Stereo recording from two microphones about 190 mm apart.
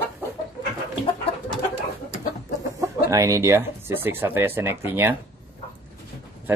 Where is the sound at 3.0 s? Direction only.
15° right (ahead or behind).